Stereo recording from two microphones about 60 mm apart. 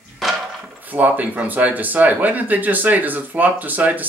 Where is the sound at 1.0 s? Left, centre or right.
Right.